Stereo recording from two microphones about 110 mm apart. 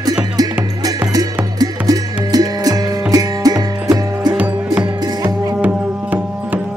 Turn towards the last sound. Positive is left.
turn(degrees=-15)  # may be behind; listen again after turning